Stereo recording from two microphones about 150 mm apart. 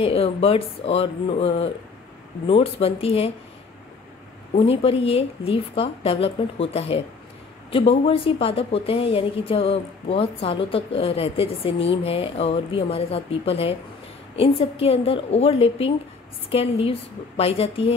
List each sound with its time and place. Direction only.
0.0 s a woman's voice: 40° left (ahead or behind)
4.6 s a woman's voice: 40° left (ahead or behind)